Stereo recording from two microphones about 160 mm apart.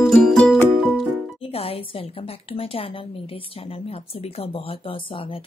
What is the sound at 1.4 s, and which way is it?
Speech, 40° left (ahead or behind).